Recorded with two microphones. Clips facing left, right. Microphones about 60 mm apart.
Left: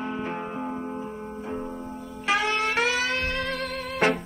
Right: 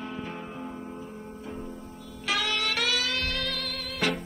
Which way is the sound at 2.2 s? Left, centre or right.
Left.